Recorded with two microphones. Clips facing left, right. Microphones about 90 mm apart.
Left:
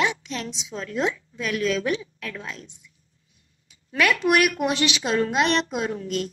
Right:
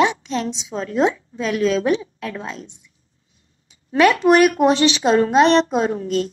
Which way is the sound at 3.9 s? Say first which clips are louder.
Right 7 dB; 35° right (ahead or behind).